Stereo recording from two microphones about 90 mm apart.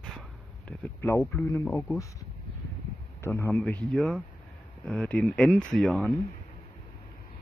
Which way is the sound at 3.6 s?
15° left (ahead or behind).